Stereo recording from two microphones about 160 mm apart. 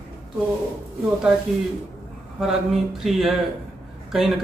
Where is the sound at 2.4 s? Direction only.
Centre (ahead or behind).